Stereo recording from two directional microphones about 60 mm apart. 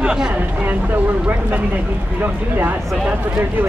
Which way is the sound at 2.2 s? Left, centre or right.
Right.